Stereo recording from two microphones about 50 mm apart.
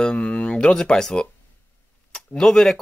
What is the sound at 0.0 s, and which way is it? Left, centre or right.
Speech, centre.